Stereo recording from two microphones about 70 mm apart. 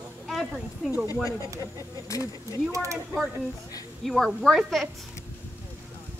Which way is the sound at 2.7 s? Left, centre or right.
Right.